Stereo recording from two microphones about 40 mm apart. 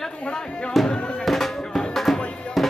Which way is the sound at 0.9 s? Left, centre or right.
Left.